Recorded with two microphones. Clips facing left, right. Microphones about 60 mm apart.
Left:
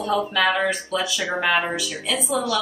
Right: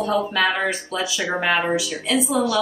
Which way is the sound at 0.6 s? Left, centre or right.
Centre.